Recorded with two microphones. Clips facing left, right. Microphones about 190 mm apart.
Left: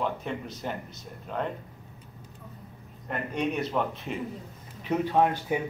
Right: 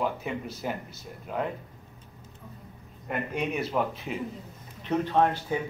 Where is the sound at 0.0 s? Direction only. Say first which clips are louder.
Right 1 dB; 5° right (ahead or behind).